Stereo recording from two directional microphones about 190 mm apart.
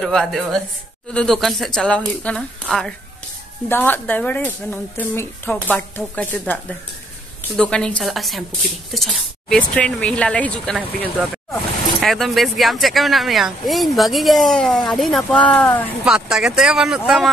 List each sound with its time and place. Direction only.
0.0 s speech: centre (ahead or behind)
16.1 s speech: centre (ahead or behind)